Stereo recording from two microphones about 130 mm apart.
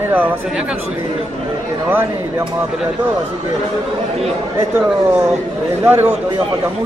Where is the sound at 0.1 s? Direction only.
10° right (ahead or behind).